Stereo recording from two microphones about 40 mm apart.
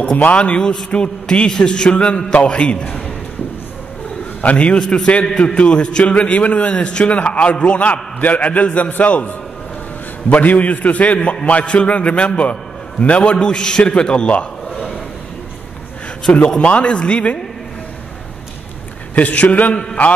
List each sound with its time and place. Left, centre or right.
0.2 s a man's voice: left
1.2 s a man's voice: left
4.4 s a man's voice: left
5.4 s a man's voice: left
6.7 s a man's voice: left
10.3 s a man's voice: left
16.4 s a man's voice: left
19.1 s a man's voice: left